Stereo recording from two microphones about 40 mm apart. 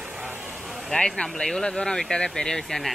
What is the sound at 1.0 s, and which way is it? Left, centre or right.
Speech, left.